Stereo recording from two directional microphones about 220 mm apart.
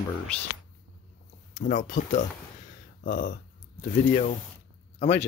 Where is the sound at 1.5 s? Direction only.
35° left (ahead or behind).